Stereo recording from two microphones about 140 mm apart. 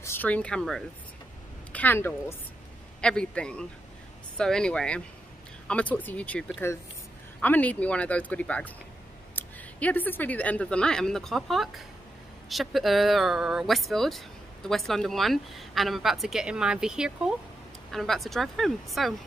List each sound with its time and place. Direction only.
0.0 s speech: 15° left (ahead or behind)